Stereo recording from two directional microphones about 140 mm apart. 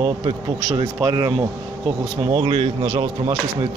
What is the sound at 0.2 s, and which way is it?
A man's voice, 30° right (ahead or behind).